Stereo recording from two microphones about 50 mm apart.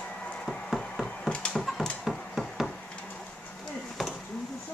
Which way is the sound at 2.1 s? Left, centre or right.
Centre.